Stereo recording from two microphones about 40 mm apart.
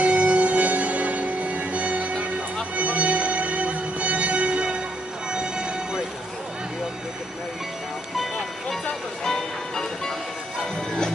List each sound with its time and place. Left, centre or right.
0.0 s music: right
5.3 s train: right
9.2 s music: centre